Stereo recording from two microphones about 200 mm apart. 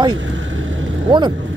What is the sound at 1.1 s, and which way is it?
Speech, 25° right (ahead or behind).